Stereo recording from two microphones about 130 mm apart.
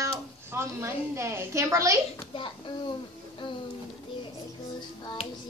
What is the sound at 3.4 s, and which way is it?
Speech, 40° left (ahead or behind).